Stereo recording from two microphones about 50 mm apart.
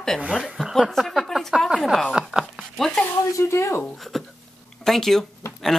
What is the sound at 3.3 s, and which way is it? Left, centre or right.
Speech, left.